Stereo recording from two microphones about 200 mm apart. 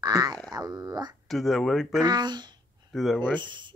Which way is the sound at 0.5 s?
20° right (ahead or behind).